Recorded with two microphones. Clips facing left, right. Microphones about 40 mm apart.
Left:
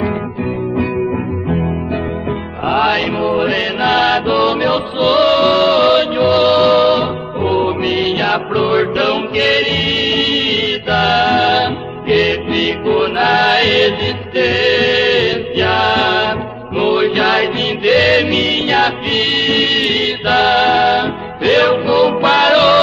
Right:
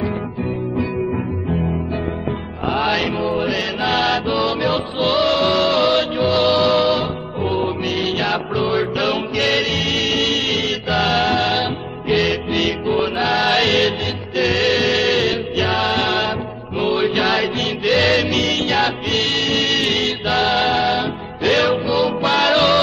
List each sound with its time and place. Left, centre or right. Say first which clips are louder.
2.7 s music: left 5 dB; left